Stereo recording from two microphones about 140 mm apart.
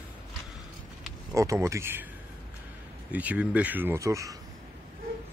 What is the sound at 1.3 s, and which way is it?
Speech, 20° right (ahead or behind).